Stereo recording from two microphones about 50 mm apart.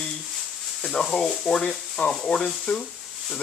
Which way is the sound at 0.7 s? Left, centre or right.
Centre.